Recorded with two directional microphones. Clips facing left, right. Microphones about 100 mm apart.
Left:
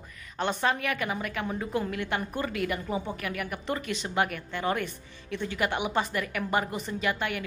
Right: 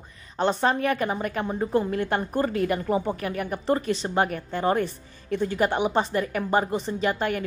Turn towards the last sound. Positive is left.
turn(degrees=-40)  # may be behind; listen again after turning